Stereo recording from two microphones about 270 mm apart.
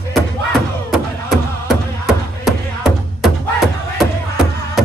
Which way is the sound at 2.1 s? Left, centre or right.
Centre.